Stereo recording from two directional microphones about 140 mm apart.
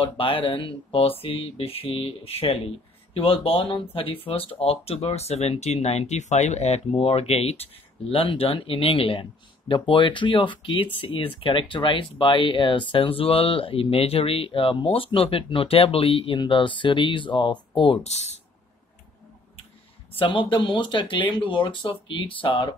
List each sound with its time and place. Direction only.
0.0 s speech: 40° left (ahead or behind)
20.2 s speech: 40° left (ahead or behind)